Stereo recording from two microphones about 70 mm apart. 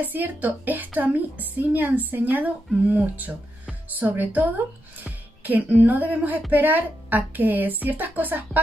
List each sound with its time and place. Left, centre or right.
0.0 s a woman's voice: right
5.0 s music: right
6.5 s a woman's voice: right